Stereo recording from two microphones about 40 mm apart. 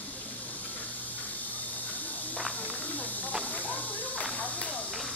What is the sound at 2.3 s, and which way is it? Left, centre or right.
Walk, left.